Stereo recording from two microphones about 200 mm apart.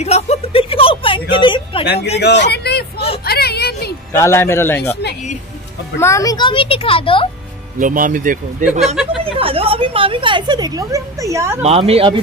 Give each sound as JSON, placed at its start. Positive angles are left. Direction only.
{"t": 0.0, "sound": "a sound", "side_deg": 35}
{"t": 1.3, "sound": "speech", "side_deg": 25}
{"t": 2.1, "sound": "a sound", "side_deg": 60}
{"t": 4.1, "sound": "a man's voice", "side_deg": 15}
{"t": 5.9, "sound": "speech", "side_deg": 15}
{"t": 7.8, "sound": "speech", "side_deg": -45}
{"t": 9.2, "sound": "a woman's voice", "side_deg": -30}
{"t": 11.6, "sound": "speech", "side_deg": -30}